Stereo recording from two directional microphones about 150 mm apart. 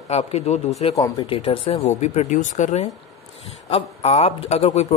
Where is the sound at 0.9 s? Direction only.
25° left (ahead or behind).